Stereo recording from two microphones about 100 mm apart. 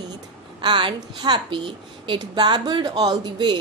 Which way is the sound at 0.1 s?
50° right (ahead or behind).